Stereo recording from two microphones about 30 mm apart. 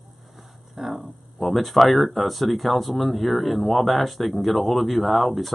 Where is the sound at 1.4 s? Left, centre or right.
Centre.